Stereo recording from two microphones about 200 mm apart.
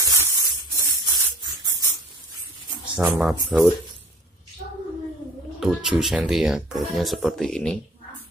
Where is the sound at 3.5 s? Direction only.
5° right (ahead or behind).